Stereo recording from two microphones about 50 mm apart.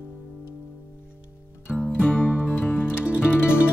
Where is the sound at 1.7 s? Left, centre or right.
Left.